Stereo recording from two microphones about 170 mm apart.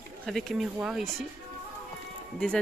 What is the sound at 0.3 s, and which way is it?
Speech, centre (ahead or behind).